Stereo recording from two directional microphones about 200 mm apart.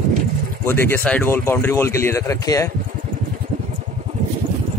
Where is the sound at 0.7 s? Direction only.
10° left (ahead or behind).